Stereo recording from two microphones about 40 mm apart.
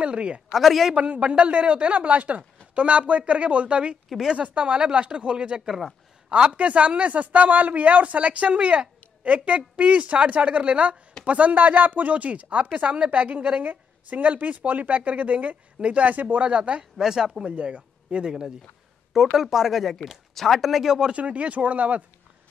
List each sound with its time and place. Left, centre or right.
0.0 s speech: right
0.6 s speech: centre
0.9 s speech: right
5.7 s a man's voice: centre
6.2 s speech: right
16.4 s speech: right
17.0 s a man's voice: centre
17.5 s speech: right
19.1 s speech: centre
21.1 s speech: right